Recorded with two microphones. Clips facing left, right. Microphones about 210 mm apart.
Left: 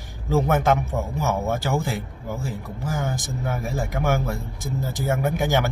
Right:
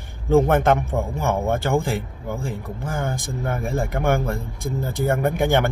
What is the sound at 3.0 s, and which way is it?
Speech, 5° left (ahead or behind).